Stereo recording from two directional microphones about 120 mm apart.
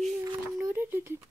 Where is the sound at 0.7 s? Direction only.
20° right (ahead or behind).